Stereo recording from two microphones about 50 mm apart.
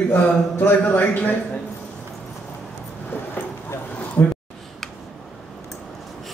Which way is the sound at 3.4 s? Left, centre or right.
Left.